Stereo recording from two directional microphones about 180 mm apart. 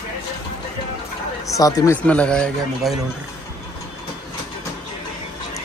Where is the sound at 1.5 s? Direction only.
20° left (ahead or behind).